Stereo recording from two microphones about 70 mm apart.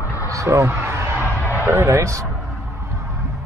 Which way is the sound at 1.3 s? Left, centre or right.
Left.